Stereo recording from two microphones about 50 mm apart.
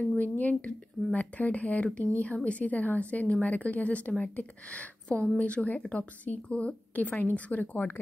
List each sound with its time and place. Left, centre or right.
0.2 s a woman's voice: left